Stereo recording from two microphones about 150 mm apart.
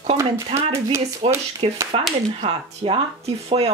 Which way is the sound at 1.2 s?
40° right (ahead or behind).